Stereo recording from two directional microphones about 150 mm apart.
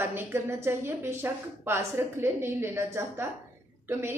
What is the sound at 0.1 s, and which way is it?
A woman's voice, 15° right (ahead or behind).